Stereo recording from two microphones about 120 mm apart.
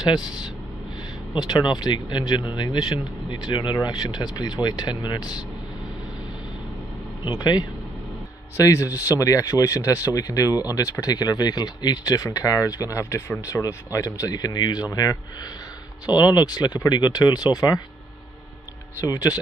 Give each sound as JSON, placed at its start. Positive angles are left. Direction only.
{"t": 0.0, "sound": "speech", "side_deg": 35}
{"t": 7.2, "sound": "speech", "side_deg": 35}
{"t": 8.5, "sound": "speech", "side_deg": 25}
{"t": 18.9, "sound": "speech", "side_deg": 30}